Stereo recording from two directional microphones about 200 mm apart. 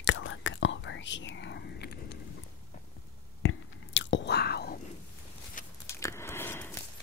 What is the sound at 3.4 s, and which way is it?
Chewing, 70° left (ahead or behind).